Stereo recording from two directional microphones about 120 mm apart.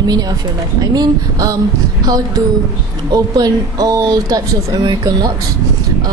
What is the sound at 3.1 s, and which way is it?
Speech, 35° right (ahead or behind).